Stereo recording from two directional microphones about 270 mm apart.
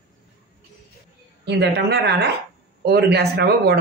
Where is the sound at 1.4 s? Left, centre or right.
Right.